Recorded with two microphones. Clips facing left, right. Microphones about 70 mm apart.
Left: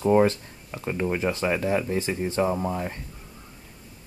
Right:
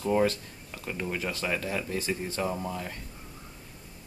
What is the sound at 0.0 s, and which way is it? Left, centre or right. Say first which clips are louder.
Speech: left 6 dB; left.